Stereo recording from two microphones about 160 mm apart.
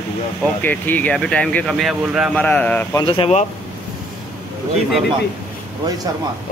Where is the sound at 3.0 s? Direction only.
35° left (ahead or behind).